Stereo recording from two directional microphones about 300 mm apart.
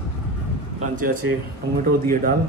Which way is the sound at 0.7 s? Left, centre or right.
Right.